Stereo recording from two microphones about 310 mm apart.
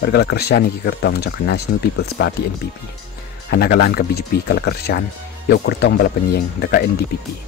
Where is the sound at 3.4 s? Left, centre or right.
Left.